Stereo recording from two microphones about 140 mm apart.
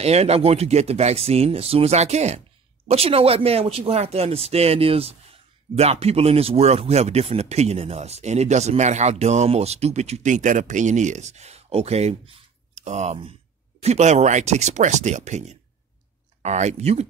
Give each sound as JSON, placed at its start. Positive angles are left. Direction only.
{"t": 0.0, "sound": "speech", "side_deg": -50}